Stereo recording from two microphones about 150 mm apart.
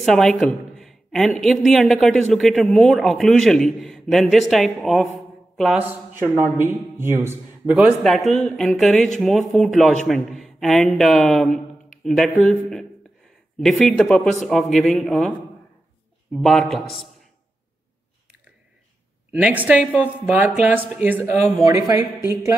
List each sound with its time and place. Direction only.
0.0 s a man's voice: centre (ahead or behind); by 7.8 s 15° right (ahead or behind)
8.0 s a man's voice: centre (ahead or behind)
16.3 s a man's voice: centre (ahead or behind)
19.4 s speech: 10° right (ahead or behind)